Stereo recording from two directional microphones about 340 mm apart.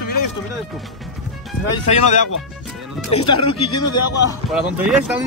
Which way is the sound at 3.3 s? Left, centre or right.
Centre.